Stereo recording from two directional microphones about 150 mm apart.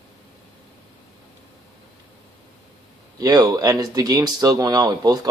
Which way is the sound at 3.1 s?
25° right (ahead or behind).